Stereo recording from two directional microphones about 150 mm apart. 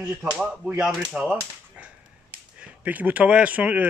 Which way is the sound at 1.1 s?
5° right (ahead or behind).